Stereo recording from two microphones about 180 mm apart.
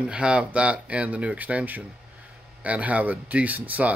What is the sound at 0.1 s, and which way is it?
Speech, 5° right (ahead or behind).